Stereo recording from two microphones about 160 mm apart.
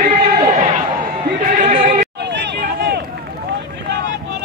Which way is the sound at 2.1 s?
90° right.